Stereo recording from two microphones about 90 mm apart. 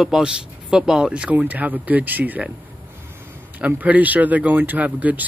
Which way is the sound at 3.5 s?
15° right (ahead or behind).